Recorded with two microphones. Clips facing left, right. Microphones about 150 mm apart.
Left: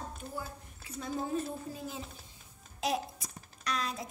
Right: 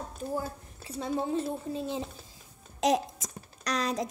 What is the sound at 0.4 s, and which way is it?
A woman's voice, 30° right (ahead or behind).